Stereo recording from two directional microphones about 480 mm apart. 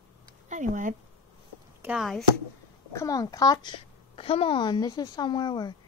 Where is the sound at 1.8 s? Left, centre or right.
Centre.